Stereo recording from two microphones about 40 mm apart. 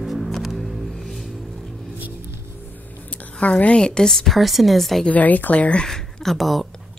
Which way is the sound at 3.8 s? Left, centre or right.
Centre.